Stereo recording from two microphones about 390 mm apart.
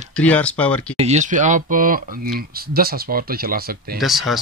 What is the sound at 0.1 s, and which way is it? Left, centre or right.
Speech, centre.